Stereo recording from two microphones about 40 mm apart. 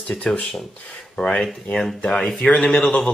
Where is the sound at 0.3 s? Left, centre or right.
Left.